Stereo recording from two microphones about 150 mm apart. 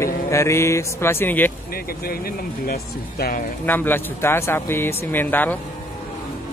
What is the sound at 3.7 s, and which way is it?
Speech, 15° left (ahead or behind).